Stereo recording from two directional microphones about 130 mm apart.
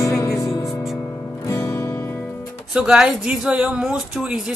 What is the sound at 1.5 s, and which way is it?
Music, 25° left (ahead or behind).